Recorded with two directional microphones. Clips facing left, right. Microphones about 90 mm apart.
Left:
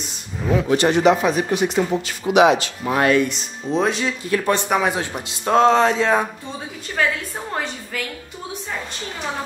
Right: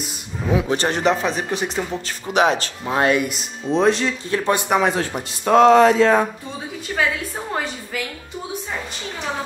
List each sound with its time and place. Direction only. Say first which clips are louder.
0.0 s a sound: even; 5° right (ahead or behind)
0.7 s speech: left 7 dB; 35° right (ahead or behind)
2.9 s speech: left 1 dB; 25° right (ahead or behind)
3.2 s a woman's voice: left 3 dB; 5° right (ahead or behind)
4.3 s speech: left 3 dB; 30° right (ahead or behind)
4.6 s a woman's voice: right 1 dB; centre (ahead or behind)
5.5 s speech: right 3 dB; 30° left (ahead or behind)
5.9 s speech: right 3 dB; 15° left (ahead or behind)
7.0 s a woman's voice: left 1 dB; 5° right (ahead or behind)